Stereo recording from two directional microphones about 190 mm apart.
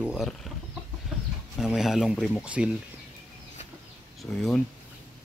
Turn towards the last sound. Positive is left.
turn(degrees=0)  # may be behind; listen again after turning